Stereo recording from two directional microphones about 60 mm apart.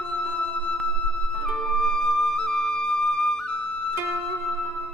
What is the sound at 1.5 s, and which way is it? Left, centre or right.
Flute, centre.